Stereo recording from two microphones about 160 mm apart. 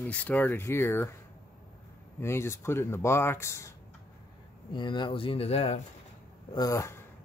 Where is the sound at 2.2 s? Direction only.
15° left (ahead or behind).